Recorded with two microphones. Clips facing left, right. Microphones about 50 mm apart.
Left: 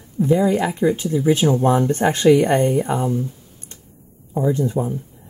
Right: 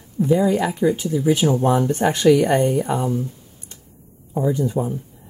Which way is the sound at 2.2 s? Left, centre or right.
Centre.